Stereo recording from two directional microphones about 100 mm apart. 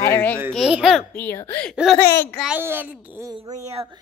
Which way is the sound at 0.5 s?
5° right (ahead or behind).